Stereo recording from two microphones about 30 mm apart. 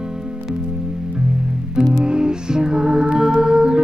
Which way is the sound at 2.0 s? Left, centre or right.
Right.